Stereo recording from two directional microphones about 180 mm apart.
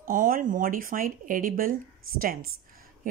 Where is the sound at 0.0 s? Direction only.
50° right (ahead or behind).